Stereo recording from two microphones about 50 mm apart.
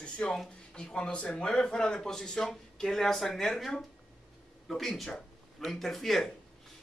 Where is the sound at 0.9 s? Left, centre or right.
Centre.